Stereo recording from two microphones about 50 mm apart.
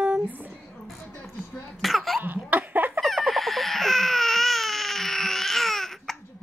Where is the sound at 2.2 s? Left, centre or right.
Right.